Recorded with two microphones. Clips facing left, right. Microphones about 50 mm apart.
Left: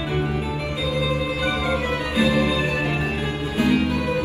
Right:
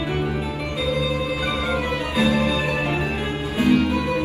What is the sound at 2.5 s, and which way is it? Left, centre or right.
Music, right.